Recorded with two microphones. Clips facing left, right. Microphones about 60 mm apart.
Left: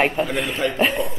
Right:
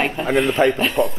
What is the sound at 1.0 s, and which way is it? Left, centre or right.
Speech, right.